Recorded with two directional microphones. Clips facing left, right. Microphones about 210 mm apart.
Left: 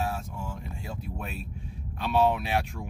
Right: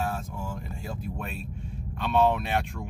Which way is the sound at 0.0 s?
Centre (ahead or behind).